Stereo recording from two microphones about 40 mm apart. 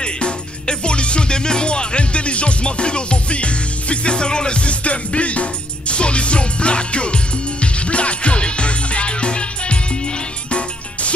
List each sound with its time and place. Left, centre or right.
0.0 s music: left